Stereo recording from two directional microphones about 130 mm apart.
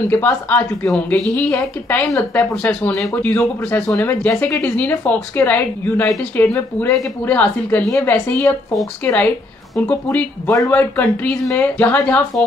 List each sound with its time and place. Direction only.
0.1 s speech: 15° left (ahead or behind)